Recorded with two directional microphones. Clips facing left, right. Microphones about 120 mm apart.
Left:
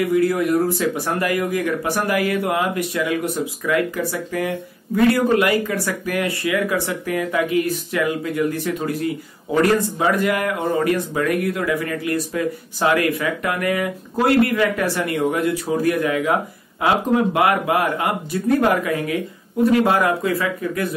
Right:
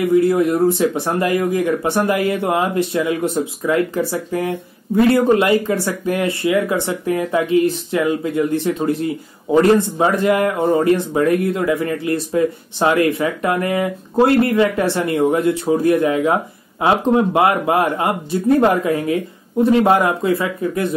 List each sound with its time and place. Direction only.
0.1 s speech: 25° right (ahead or behind)